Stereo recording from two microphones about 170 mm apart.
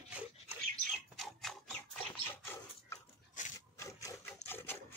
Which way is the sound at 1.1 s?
Centre (ahead or behind).